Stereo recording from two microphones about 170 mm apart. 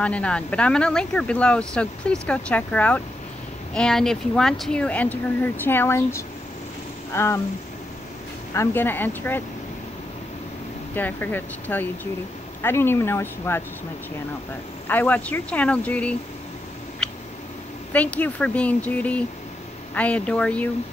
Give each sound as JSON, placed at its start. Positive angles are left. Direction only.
{"t": 0.0, "sound": "speech", "side_deg": 5}
{"t": 8.5, "sound": "speech", "side_deg": 10}
{"t": 11.0, "sound": "speech", "side_deg": 10}
{"t": 14.9, "sound": "speech", "side_deg": 10}
{"t": 17.9, "sound": "speech", "side_deg": 10}